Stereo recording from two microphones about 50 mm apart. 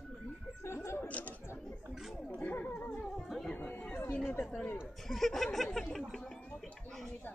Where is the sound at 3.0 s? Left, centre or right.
Centre.